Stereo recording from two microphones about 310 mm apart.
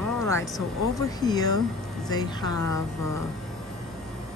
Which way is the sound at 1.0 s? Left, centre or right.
Centre.